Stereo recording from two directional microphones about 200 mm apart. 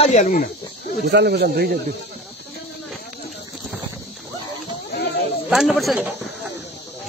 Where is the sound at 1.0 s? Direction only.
55° right (ahead or behind).